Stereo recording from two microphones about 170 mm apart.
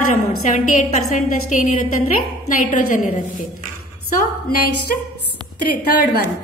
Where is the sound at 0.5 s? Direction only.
50° left (ahead or behind).